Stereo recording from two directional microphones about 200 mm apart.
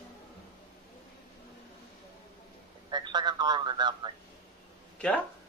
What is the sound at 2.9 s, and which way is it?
A man's voice, 20° right (ahead or behind).